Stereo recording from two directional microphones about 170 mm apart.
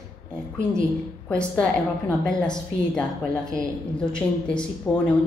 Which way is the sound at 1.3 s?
5° left (ahead or behind).